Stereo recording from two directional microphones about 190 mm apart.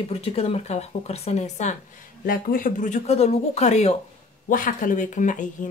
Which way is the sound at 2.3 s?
50° left (ahead or behind).